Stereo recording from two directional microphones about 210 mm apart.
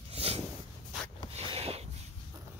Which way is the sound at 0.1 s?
30° right (ahead or behind).